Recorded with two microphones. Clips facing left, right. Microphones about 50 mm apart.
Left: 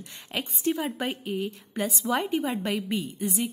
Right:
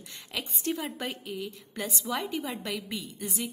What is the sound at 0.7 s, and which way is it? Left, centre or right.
Speech, centre.